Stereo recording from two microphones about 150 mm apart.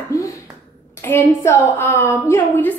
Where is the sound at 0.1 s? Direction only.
20° left (ahead or behind).